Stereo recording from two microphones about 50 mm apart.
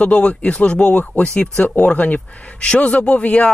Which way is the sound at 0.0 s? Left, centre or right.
Left.